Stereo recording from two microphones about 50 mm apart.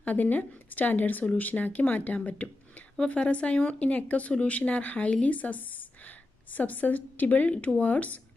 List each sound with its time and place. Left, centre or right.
0.0 s a woman's voice: left